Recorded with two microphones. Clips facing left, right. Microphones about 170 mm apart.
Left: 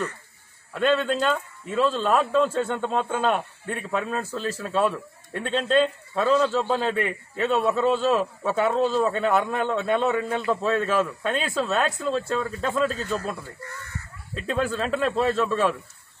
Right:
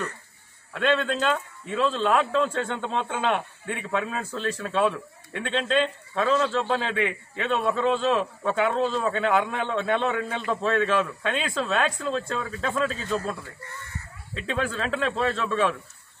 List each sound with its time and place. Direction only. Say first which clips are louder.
0.7 s a man's voice: left 2 dB; centre (ahead or behind)